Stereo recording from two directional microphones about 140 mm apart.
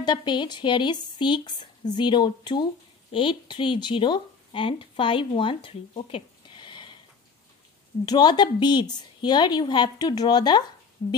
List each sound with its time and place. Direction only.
0.0 s speech: 30° left (ahead or behind)
8.0 s speech: 30° left (ahead or behind)